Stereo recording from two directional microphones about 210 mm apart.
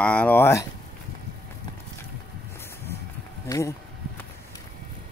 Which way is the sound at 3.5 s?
15° left (ahead or behind).